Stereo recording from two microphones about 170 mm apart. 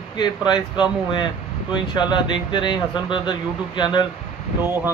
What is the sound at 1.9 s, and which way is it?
Speech, 25° left (ahead or behind).